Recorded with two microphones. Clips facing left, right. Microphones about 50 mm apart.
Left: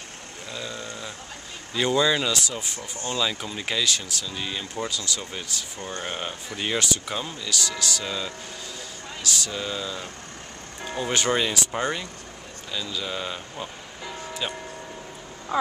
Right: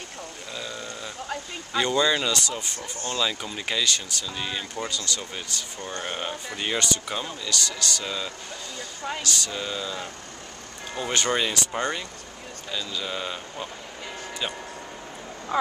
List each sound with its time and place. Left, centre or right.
0.5 s sheep: centre
1.8 s speech: centre